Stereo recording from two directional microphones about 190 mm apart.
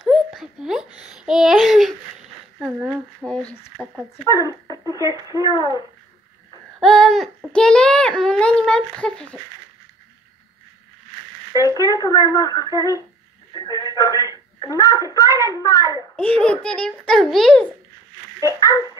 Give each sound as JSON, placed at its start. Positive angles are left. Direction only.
{"t": 0.0, "sound": "a sound", "side_deg": 0}
{"t": 1.1, "sound": "a child's voice", "side_deg": -5}
{"t": 3.3, "sound": "a child's voice", "side_deg": 5}
{"t": 4.3, "sound": "speech", "side_deg": 20}
{"t": 6.8, "sound": "a child's voice", "side_deg": 5}
{"t": 11.5, "sound": "speech", "side_deg": 20}
{"t": 16.2, "sound": "a child's voice", "side_deg": 5}
{"t": 18.4, "sound": "a child's voice", "side_deg": 20}